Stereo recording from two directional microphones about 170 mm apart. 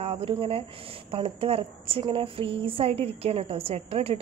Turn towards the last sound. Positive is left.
turn(degrees=-35)  # may be behind; listen again after turning